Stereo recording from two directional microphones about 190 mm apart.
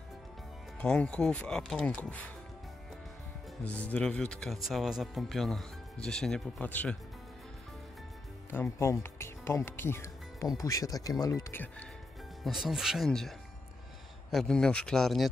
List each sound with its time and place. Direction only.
0.7 s speech: 5° left (ahead or behind)
3.6 s speech: 5° left (ahead or behind)
8.5 s speech: 15° left (ahead or behind)
12.4 s speech: centre (ahead or behind)
14.3 s speech: 5° left (ahead or behind)